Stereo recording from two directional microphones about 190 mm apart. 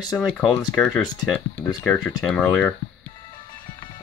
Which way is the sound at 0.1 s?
Centre (ahead or behind).